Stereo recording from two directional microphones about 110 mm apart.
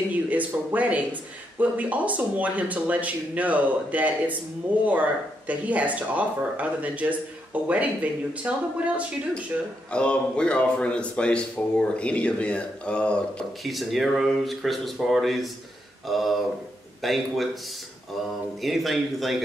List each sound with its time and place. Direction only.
0.1 s speech: 15° right (ahead or behind)
9.8 s a man's voice: 10° left (ahead or behind)
18.6 s speech: centre (ahead or behind)